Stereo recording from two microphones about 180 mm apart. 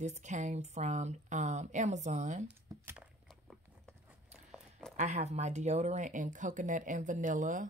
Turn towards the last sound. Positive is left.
turn(degrees=-45)  # may be behind; listen again after turning